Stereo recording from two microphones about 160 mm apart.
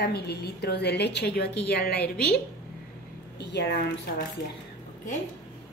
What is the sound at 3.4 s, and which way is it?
Speech, 90° left.